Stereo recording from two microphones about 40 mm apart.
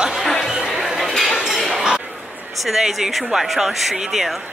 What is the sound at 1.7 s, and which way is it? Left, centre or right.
Chink, centre.